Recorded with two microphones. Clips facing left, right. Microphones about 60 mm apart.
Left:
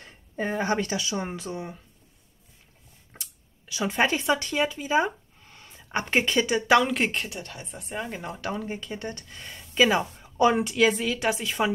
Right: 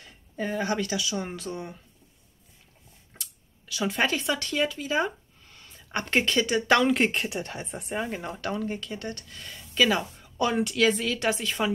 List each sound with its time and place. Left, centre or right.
0.0 s speech: left
3.1 s speech: left; by 7.2 s centre
7.2 s speech: right
7.9 s speech: centre